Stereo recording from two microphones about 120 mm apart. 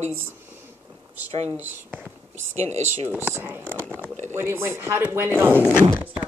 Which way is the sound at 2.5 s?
65° right (ahead or behind).